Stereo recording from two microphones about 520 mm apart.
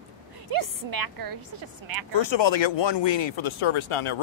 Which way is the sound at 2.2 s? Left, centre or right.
Left.